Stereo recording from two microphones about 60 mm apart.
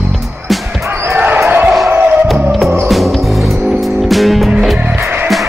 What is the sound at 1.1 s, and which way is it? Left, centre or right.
Basketball bounce, right.